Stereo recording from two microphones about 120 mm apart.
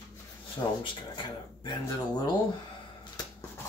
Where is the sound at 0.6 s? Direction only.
35° left (ahead or behind).